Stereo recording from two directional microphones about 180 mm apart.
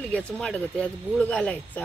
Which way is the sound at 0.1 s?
5° left (ahead or behind).